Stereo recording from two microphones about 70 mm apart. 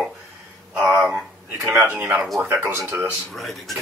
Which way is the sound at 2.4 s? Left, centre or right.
Right.